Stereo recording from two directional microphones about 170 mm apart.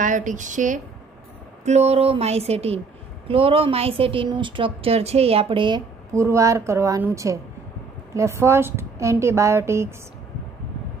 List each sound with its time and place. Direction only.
0.0 s a woman's voice: 50° right (ahead or behind); by 5.8 s 30° right (ahead or behind)
6.1 s a woman's voice: 15° right (ahead or behind)
8.1 s a woman's voice: 15° right (ahead or behind)